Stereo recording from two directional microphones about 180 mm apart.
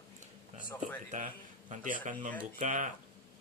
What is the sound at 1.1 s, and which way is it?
Speech, 45° right (ahead or behind).